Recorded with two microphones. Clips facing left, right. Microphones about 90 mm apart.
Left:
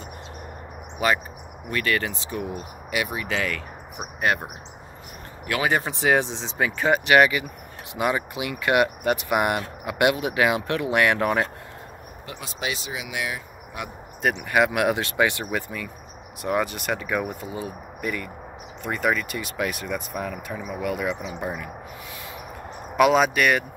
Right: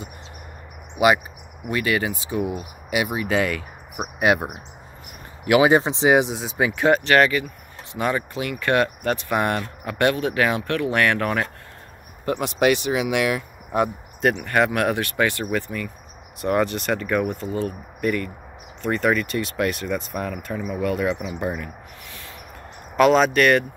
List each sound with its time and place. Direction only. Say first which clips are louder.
0.9 s speech: right 5 dB; 10° right (ahead or behind)
5.5 s speech: right 8 dB; 20° right (ahead or behind)
7.1 s speech: even; 15° left (ahead or behind)
12.3 s speech: right 12 dB; 60° right (ahead or behind)
14.2 s speech: right 2 dB; 10° left (ahead or behind)
22.9 s speech: right 2 dB; 5° left (ahead or behind)